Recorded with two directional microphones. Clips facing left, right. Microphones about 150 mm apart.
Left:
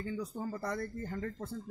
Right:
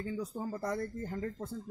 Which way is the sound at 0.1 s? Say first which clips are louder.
Right 1 dB; 15° right (ahead or behind).